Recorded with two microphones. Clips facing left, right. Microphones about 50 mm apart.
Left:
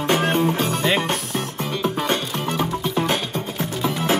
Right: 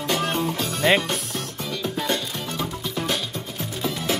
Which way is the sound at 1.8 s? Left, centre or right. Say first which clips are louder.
Left 3 dB; left.